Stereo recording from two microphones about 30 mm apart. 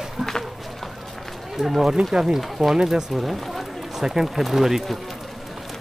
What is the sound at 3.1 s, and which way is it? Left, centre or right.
Speech, centre.